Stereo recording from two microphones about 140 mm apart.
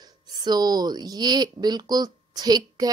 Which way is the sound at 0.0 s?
30° right (ahead or behind).